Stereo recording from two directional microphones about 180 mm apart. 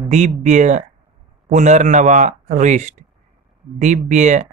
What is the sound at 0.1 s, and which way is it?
Speech, 40° right (ahead or behind).